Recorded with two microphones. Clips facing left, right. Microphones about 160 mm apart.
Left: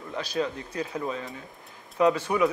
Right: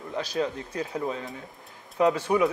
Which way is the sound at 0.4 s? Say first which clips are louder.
Even; 30° right (ahead or behind).